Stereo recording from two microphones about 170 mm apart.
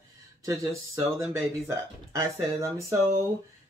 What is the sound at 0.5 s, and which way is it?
Speech, 15° right (ahead or behind).